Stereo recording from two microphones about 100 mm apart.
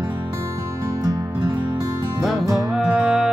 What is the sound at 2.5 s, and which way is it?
Music, 10° right (ahead or behind).